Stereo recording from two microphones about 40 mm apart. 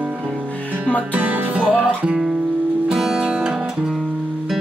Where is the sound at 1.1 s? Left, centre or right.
Right.